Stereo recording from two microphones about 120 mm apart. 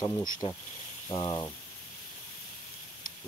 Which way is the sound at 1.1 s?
40° left (ahead or behind).